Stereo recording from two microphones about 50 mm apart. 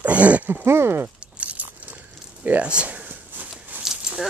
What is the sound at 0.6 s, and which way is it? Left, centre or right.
Speech, right.